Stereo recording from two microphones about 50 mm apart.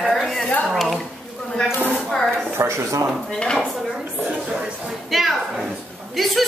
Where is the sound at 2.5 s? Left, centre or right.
Right.